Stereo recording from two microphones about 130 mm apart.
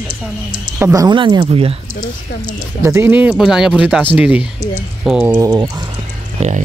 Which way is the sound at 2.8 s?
20° right (ahead or behind).